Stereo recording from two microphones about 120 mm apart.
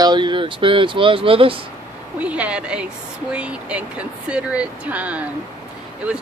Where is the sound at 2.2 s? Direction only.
10° right (ahead or behind).